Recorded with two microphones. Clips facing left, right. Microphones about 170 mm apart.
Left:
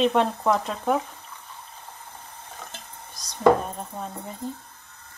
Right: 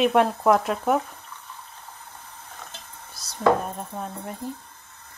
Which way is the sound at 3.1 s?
5° right (ahead or behind).